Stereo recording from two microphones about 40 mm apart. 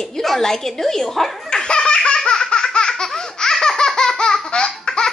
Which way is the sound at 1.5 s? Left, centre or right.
Centre.